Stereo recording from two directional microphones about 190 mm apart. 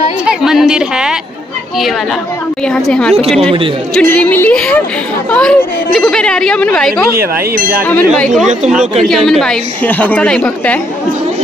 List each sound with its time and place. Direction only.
0.2 s speech: 5° right (ahead or behind)
2.6 s a woman's voice: 5° left (ahead or behind)
7.5 s speech: 50° right (ahead or behind)
7.8 s a woman's voice: 10° left (ahead or behind)